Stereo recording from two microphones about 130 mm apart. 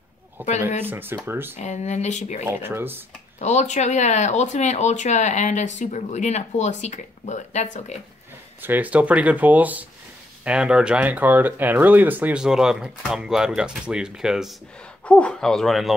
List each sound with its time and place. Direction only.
0.4 s speech: 15° right (ahead or behind)
1.6 s speech: 60° left (ahead or behind)
2.4 s speech: 15° right (ahead or behind)
3.3 s speech: 60° left (ahead or behind)
8.6 s speech: 15° right (ahead or behind)
15.0 s speech: 10° left (ahead or behind)